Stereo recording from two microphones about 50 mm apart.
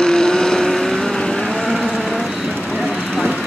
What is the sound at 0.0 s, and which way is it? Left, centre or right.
Vehicle, centre.